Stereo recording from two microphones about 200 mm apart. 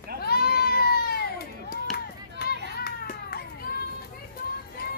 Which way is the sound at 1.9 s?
50° left (ahead or behind).